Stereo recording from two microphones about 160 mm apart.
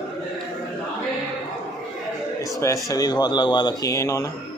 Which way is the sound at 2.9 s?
25° left (ahead or behind).